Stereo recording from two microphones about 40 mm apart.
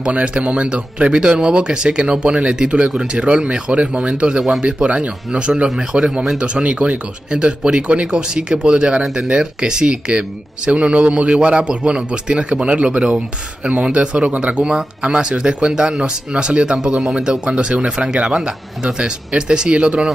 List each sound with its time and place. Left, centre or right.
0.0 s speech: right